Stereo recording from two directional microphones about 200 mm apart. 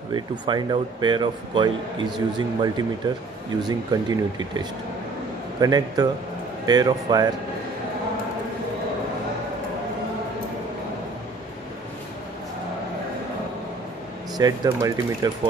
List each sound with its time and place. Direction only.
0.1 s speech: 20° right (ahead or behind)
14.3 s speech: 20° right (ahead or behind)